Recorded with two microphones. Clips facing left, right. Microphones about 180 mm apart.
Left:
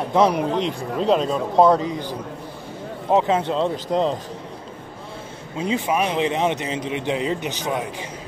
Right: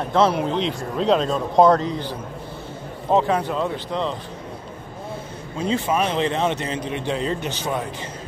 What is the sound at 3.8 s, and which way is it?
Speech, 40° left (ahead or behind).